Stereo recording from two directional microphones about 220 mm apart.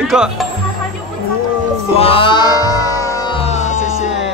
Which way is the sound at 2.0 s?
25° left (ahead or behind).